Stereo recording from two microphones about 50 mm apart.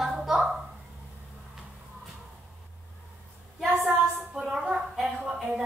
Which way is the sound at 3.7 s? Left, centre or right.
Right.